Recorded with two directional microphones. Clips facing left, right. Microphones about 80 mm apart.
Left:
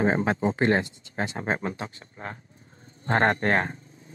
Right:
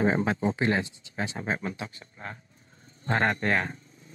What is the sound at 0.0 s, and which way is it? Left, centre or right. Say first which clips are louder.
Speech: left 2 dB; left.